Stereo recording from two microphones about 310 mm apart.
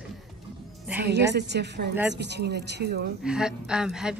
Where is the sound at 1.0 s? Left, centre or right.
Right.